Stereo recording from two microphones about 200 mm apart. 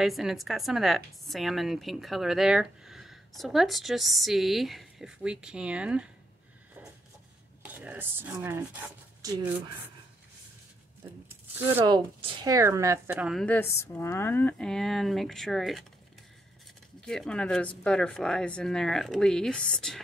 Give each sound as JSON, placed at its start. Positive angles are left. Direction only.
{"t": 0.0, "sound": "a woman's voice", "side_deg": 0}
{"t": 7.6, "sound": "speech", "side_deg": -5}
{"t": 11.8, "sound": "a woman's voice", "side_deg": -20}
{"t": 17.0, "sound": "a woman's voice", "side_deg": 5}